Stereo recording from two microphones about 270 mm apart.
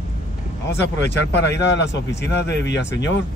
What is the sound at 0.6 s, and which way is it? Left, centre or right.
Speech, left.